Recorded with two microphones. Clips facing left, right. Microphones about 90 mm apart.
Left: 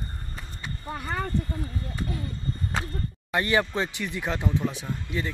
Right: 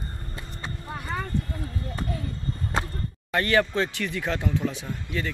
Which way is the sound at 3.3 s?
20° left (ahead or behind).